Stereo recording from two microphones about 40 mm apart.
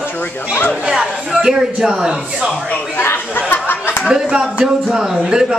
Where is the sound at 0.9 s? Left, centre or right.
Centre.